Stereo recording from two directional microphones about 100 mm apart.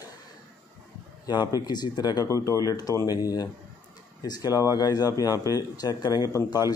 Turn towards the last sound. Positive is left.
turn(degrees=40)  # may be behind; listen again after turning